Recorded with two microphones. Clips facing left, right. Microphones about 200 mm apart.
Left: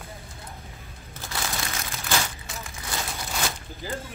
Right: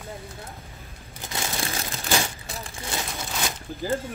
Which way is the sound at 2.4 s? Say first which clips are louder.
Right 2 dB; 35° right (ahead or behind).